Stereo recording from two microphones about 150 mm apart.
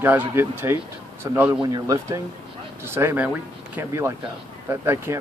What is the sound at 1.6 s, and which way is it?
Speech, 25° right (ahead or behind).